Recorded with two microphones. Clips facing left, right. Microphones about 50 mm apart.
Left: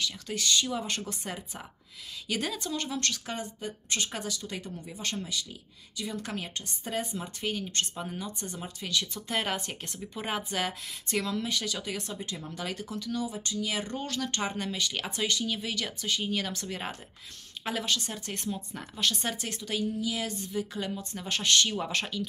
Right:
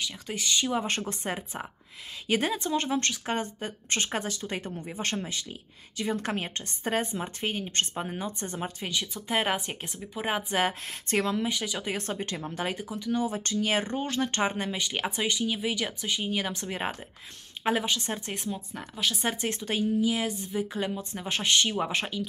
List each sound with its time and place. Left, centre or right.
0.0 s a woman's voice: centre; by 8.7 s right
8.8 s speech: right
10.5 s a woman's voice: right
11.3 s speech: centre
11.9 s speech: right
12.4 s a woman's voice: right
12.7 s speech: centre
13.3 s speech: right
13.8 s speech: right
18.3 s speech: centre
19.2 s speech: right